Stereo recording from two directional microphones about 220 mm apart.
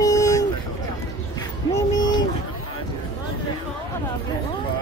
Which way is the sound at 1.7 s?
20° left (ahead or behind).